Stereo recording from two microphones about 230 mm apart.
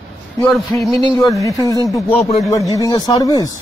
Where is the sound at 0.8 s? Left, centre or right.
Centre.